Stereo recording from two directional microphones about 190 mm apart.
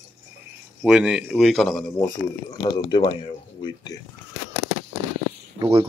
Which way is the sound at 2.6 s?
25° left (ahead or behind).